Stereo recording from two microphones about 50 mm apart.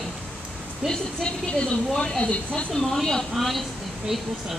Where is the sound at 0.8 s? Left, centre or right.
Centre.